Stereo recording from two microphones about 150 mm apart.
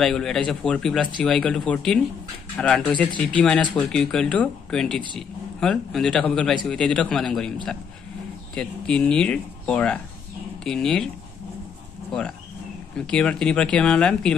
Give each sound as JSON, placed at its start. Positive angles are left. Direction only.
{"t": 0.0, "sound": "speech", "side_deg": 5}
{"t": 8.5, "sound": "speech", "side_deg": 5}
{"t": 12.1, "sound": "speech", "side_deg": 5}